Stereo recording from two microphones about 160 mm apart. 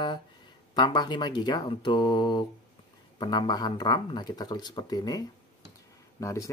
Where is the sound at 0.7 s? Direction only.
25° left (ahead or behind).